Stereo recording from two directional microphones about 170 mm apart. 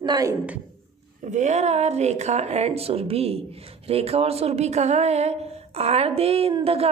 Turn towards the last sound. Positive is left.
turn(degrees=-35)  # may be behind; listen again after turning